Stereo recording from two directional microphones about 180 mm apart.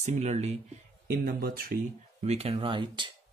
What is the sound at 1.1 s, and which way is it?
Speech, 50° right (ahead or behind).